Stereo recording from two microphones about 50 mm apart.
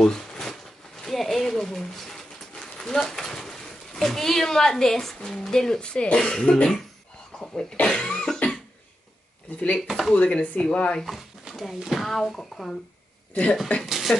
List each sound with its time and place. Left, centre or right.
0.0 s a sound: centre
1.0 s speech: centre
7.3 s cough: centre
9.8 s speech: centre
10.1 s speech: left
11.1 s speech: centre
13.3 s speech: left
13.8 s speech: centre